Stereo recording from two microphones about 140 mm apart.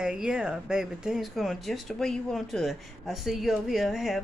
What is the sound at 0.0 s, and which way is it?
A woman's voice, 5° right (ahead or behind).